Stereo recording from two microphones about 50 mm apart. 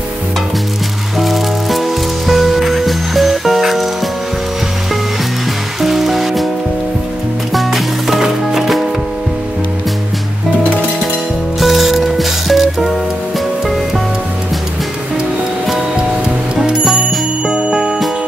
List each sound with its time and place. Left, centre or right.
1.2 s music: centre
5.8 s music: centre
7.5 s music: centre
11.6 s music: centre
17.5 s bicycle bell: right